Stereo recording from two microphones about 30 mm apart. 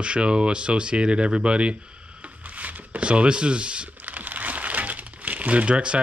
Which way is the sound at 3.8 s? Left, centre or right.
Right.